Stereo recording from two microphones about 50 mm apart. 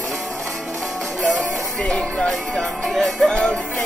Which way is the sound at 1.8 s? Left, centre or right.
Centre.